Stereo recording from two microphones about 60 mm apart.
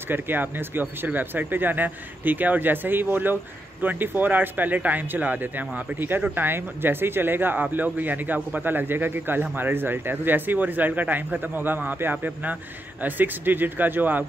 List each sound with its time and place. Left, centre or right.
0.1 s a man's voice: right